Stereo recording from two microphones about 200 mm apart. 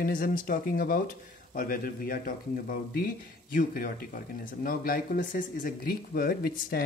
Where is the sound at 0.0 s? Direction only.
45° left (ahead or behind).